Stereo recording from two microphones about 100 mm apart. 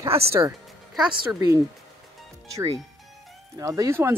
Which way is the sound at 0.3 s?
30° right (ahead or behind).